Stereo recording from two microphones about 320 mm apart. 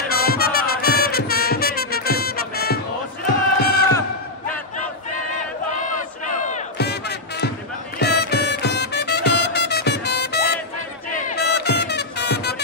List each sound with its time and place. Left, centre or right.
0.1 s music: left
3.6 s battle cry: left
6.4 s music: left